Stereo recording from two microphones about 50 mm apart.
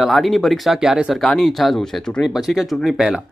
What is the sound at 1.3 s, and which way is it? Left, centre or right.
Speech, centre.